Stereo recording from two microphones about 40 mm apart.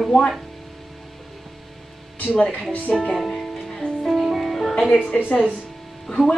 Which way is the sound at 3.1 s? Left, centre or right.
Centre.